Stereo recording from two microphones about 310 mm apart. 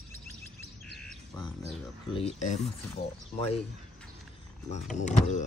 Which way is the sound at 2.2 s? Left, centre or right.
Left.